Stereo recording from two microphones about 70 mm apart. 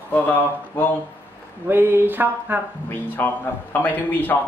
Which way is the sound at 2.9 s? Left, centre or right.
Left.